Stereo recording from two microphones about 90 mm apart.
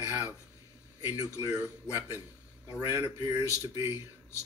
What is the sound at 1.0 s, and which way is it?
Speech, 40° left (ahead or behind).